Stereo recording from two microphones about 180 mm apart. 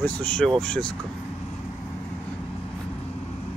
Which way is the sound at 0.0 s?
5° left (ahead or behind).